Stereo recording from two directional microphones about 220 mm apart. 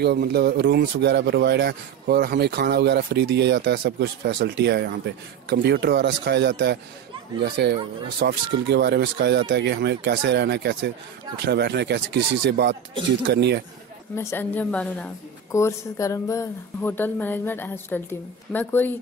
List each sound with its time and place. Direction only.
0.0 s speech: 50° right (ahead or behind)
14.1 s a woman's voice: 10° left (ahead or behind)